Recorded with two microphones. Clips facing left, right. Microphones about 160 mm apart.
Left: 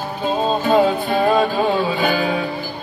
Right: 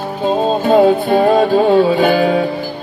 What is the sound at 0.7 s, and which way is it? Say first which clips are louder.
Music: right 6 dB; 40° right (ahead or behind).